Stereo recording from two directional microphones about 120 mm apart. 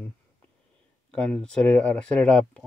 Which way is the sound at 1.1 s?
10° left (ahead or behind).